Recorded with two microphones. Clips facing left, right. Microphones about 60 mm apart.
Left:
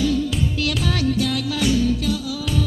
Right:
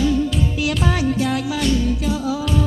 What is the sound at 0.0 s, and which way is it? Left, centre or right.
Music, right.